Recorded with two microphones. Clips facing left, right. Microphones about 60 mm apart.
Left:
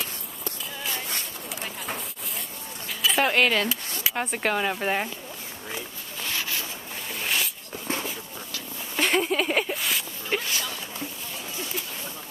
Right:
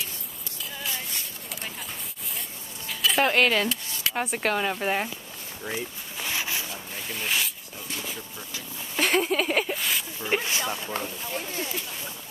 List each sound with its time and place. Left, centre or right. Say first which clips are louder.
2.9 s speech: even; centre
5.7 s zipper: right 4 dB; centre
7.1 s speech: even; centre
7.9 s a sound: left 7 dB; left
8.9 s a sound: even; centre
10.2 s speech: right 3 dB; centre
11.0 s speech: right 4 dB; right